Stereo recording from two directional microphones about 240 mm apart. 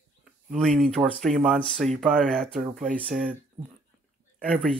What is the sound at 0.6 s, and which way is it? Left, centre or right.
Speech, centre.